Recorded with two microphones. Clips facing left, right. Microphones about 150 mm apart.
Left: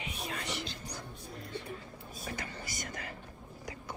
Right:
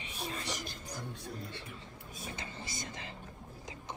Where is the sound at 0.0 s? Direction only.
35° right (ahead or behind).